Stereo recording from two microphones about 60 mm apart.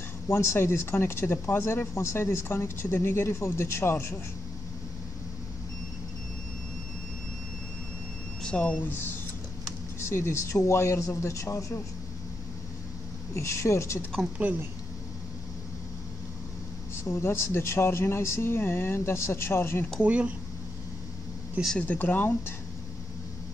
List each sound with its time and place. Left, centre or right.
0.3 s speech: left
8.4 s speech: centre
8.8 s speech: left
9.9 s speech: left
13.3 s speech: left
17.2 s speech: left
20.0 s speech: right
21.7 s speech: left